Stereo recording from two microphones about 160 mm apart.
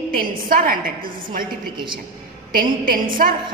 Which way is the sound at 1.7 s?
30° right (ahead or behind).